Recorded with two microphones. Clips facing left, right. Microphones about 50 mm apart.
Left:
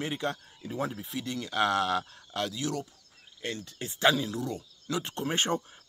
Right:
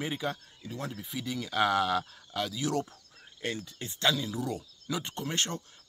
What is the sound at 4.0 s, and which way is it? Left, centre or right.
Speech, centre.